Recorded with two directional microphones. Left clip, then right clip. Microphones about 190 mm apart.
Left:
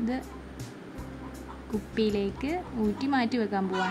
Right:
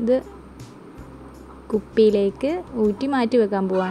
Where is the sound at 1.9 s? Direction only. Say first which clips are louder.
Right 12 dB; 20° right (ahead or behind).